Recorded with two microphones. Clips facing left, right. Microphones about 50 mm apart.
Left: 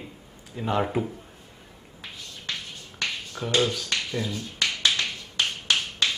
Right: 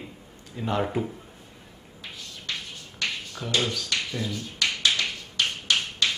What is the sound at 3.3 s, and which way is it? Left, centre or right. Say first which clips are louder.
Speech: left 4 dB; centre.